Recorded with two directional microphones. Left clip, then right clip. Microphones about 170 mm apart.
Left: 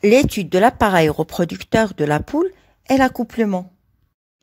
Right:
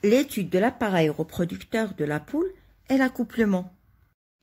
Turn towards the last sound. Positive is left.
turn(degrees=30)  # may be behind; listen again after turning